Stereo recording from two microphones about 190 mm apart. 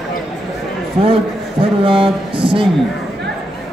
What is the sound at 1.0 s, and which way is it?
A man's voice, 30° right (ahead or behind).